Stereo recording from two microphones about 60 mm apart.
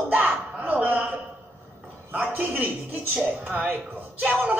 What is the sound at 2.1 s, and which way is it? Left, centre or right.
Speech, right.